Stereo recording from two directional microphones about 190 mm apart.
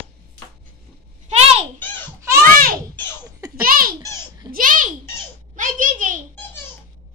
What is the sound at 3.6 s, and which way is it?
Baby laughter, 50° right (ahead or behind).